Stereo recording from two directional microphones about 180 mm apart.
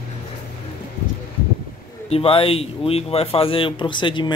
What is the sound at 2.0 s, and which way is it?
Speech, 30° left (ahead or behind).